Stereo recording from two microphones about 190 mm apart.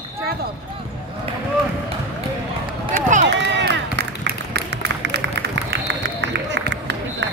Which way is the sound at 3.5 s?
65° right (ahead or behind).